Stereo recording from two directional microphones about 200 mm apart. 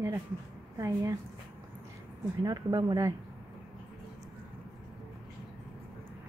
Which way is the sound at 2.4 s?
20° right (ahead or behind).